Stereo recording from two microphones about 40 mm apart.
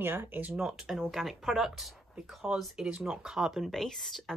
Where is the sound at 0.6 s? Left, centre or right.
Centre.